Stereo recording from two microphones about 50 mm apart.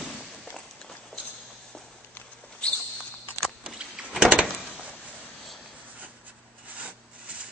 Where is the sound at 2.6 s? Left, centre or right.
Centre.